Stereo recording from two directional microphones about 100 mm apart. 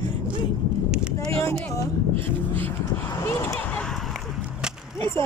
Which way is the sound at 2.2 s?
25° left (ahead or behind).